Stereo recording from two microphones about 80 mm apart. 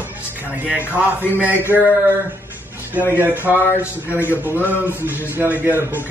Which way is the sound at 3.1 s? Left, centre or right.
Right.